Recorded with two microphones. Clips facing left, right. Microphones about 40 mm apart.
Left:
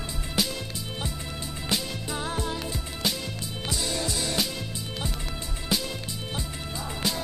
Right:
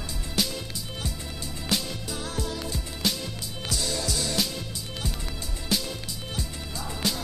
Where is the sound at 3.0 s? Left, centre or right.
Centre.